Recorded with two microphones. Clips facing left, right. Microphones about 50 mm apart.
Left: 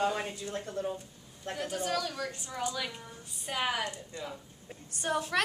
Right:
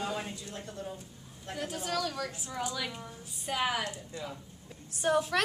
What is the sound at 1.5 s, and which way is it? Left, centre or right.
Speech, centre.